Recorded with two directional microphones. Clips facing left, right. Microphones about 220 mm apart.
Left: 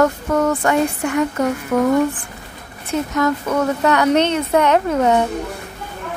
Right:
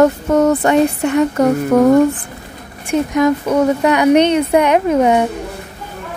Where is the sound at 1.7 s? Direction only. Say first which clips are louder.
Right 5 dB; 35° right (ahead or behind).